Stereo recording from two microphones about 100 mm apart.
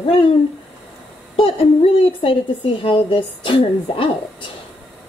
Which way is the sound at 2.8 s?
60° left (ahead or behind).